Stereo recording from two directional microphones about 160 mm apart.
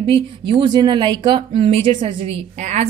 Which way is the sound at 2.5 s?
45° right (ahead or behind).